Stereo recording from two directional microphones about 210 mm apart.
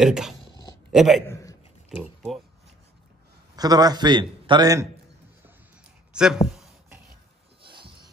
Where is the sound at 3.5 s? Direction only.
20° right (ahead or behind).